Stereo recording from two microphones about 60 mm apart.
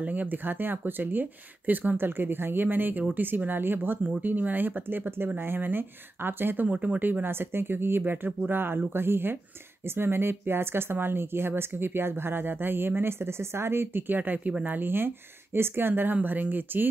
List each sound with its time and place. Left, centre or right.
0.0 s speech: right